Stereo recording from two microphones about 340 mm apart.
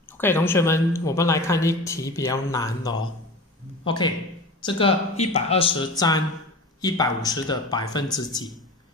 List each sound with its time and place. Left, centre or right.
0.2 s speech: centre